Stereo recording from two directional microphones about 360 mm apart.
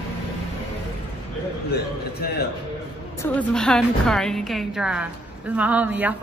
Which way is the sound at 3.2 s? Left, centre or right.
Centre.